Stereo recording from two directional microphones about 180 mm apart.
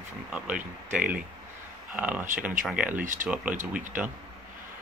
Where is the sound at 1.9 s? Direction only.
10° right (ahead or behind).